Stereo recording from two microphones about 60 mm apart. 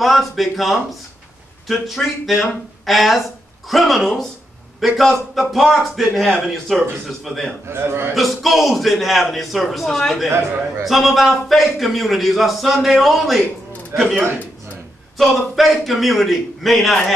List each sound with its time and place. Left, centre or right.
0.0 s a man's voice: centre
7.6 s a man's voice: right
8.1 s a man's voice: centre
15.1 s a man's voice: centre